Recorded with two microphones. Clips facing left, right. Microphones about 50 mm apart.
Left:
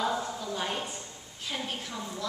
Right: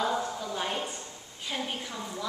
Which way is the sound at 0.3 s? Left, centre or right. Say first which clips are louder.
Right 1 dB; centre.